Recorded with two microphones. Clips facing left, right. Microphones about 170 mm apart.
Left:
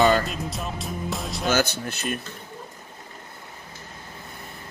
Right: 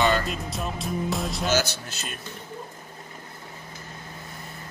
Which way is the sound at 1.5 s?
55° left (ahead or behind).